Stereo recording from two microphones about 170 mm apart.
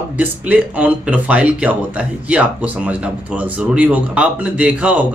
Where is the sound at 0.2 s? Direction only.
10° right (ahead or behind).